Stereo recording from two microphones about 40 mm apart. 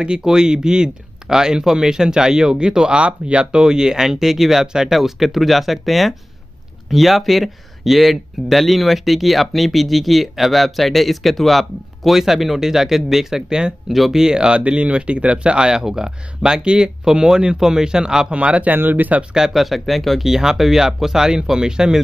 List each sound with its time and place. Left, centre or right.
0.0 s speech: centre
13.5 s speech: right
13.8 s speech: centre
14.1 s speech: centre
14.6 s speech: right
18.3 s speech: right
18.8 s speech: right
19.5 s speech: centre